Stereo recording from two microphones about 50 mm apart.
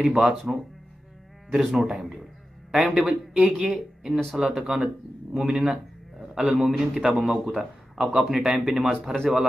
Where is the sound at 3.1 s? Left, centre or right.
Right.